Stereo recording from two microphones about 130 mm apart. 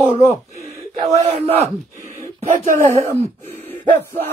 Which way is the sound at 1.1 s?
50° right (ahead or behind).